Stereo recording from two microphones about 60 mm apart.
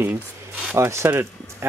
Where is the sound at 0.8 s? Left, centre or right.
Right.